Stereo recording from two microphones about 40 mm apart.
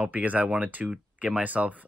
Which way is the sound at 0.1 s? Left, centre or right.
Right.